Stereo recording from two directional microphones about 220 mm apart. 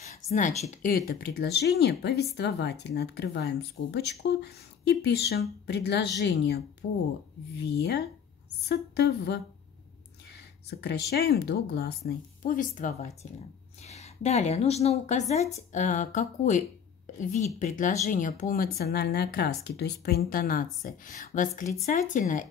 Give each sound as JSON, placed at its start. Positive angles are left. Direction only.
{"t": 0.3, "sound": "a woman's voice", "side_deg": 30}
{"t": 1.0, "sound": "speech", "side_deg": 50}
{"t": 10.7, "sound": "a woman's voice", "side_deg": 50}